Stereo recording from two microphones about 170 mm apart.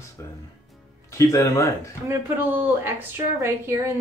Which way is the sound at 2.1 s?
10° right (ahead or behind).